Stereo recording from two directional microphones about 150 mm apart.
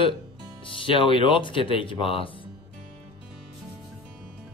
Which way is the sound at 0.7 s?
35° left (ahead or behind).